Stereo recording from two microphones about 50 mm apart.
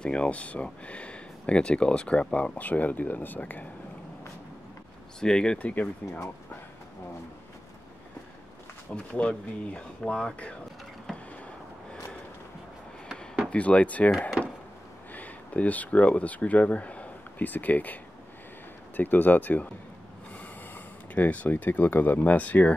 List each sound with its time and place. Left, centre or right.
0.0 s speech: left
5.2 s speech: centre
8.9 s speech: left
13.5 s speech: left
15.1 s speech: left
18.9 s speech: left